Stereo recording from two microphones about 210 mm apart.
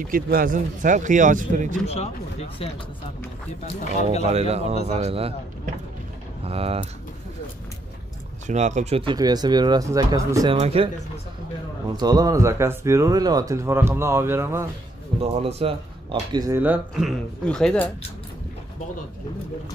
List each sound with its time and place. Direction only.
0.0 s speech: 40° right (ahead or behind)
1.9 s speech: 30° left (ahead or behind)
4.2 s speech: 30° right (ahead or behind)
6.4 s speech: 30° right (ahead or behind)
8.5 s speech: 35° right (ahead or behind)
12.0 s speech: 20° right (ahead or behind)
15.1 s speech: 25° right (ahead or behind); by 17.8 s 5° left (ahead or behind)